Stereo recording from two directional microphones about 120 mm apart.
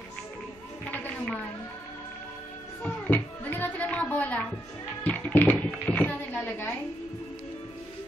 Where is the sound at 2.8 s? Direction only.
15° left (ahead or behind).